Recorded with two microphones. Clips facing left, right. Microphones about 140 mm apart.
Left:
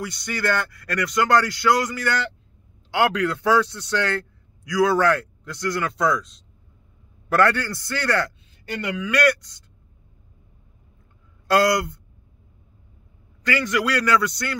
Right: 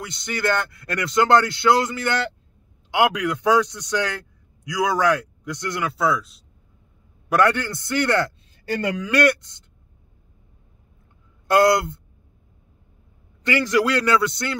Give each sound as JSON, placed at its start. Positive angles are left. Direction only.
{"t": 0.0, "sound": "a man's voice", "side_deg": -20}
{"t": 5.9, "sound": "speech", "side_deg": -5}
{"t": 7.2, "sound": "speech", "side_deg": -15}
{"t": 11.4, "sound": "speech", "side_deg": -20}
{"t": 13.4, "sound": "speech", "side_deg": -25}